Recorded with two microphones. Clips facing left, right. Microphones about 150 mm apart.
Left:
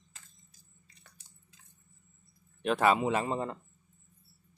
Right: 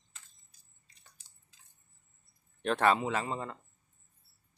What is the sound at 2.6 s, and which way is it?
Speech, 5° left (ahead or behind).